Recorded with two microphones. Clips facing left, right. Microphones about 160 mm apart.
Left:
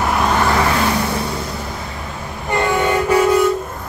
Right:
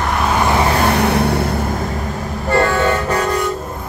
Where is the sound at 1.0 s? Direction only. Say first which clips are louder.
Right 6 dB; 65° right (ahead or behind).